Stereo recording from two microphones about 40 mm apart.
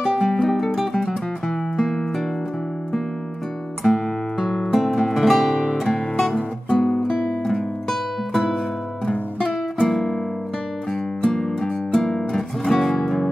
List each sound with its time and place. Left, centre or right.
0.0 s music: centre
3.8 s guitar: centre
4.7 s music: centre
5.9 s music: centre
7.4 s music: centre
9.8 s music: centre
11.2 s music: centre